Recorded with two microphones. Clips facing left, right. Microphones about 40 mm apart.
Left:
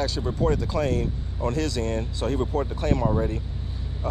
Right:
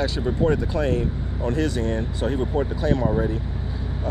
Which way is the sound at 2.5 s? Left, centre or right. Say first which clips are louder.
Right 2 dB; centre.